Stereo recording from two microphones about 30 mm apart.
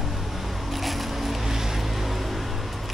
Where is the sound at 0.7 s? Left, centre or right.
Centre.